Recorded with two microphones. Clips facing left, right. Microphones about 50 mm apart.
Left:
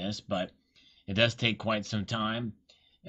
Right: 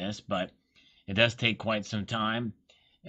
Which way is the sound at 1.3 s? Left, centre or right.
Centre.